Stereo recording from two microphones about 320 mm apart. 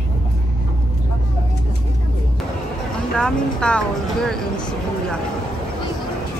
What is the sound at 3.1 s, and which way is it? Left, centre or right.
Speech, centre.